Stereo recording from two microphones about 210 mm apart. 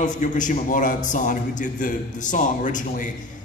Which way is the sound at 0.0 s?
35° left (ahead or behind).